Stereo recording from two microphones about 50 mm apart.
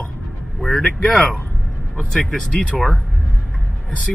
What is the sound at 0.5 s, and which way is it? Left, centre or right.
Speech, centre.